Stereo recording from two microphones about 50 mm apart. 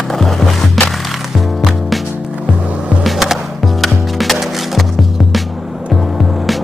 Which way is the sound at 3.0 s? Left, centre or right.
Centre.